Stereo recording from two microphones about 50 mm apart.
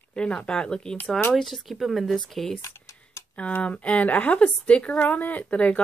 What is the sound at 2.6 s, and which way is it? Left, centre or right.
Typing, left.